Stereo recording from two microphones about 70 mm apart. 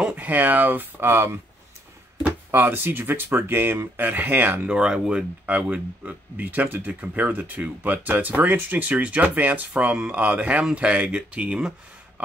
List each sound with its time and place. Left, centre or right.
0.0 s speech: right
2.5 s speech: right
4.6 s speech: centre
5.5 s speech: right